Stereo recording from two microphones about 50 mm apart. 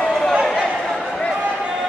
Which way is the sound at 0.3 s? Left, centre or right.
Centre.